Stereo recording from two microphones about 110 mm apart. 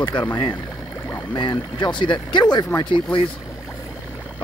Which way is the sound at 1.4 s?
45° left (ahead or behind).